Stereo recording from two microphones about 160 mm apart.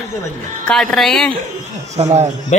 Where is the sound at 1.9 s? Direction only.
45° right (ahead or behind).